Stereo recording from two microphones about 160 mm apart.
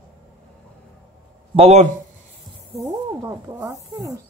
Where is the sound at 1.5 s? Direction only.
45° right (ahead or behind).